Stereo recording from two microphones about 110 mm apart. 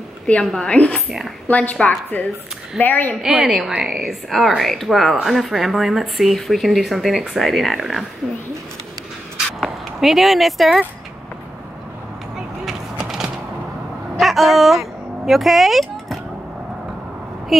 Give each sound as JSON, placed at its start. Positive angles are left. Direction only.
{"t": 0.3, "sound": "a woman's voice", "side_deg": 5}
{"t": 1.0, "sound": "a woman's voice", "side_deg": -5}
{"t": 1.5, "sound": "a woman's voice", "side_deg": 15}
{"t": 3.2, "sound": "speech", "side_deg": -5}
{"t": 9.6, "sound": "speech", "side_deg": 0}
{"t": 12.6, "sound": "vehicle", "side_deg": -5}
{"t": 14.1, "sound": "a sound", "side_deg": 0}
{"t": 17.5, "sound": "a sound", "side_deg": 0}